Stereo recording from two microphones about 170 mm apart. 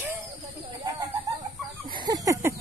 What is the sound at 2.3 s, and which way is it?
Speech, 15° right (ahead or behind).